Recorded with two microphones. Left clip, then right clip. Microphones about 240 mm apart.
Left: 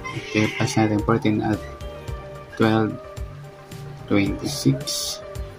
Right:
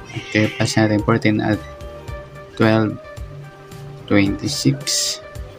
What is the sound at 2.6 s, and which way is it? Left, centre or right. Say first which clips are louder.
Speech: right 4 dB; centre.